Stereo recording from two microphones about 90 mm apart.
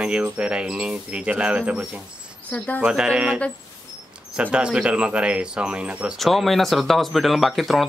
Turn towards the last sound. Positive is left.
turn(degrees=0)  # may be behind; listen again after turning